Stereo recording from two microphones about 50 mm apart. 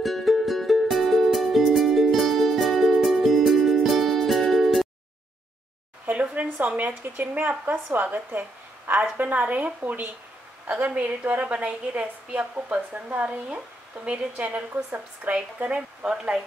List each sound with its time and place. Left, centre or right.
0.0 s music: centre
6.0 s a sound: right
6.8 s a woman's voice: right
15.6 s speech: right